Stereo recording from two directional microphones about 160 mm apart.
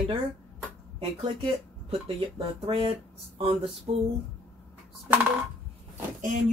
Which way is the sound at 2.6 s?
35° right (ahead or behind).